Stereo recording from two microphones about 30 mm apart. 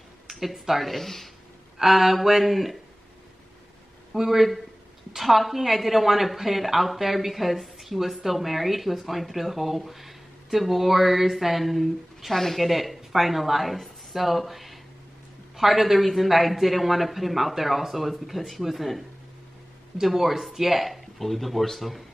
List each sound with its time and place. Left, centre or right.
0.3 s a woman's voice: centre
1.8 s a woman's voice: centre
4.1 s a woman's voice: centre
20.2 s a woman's voice: centre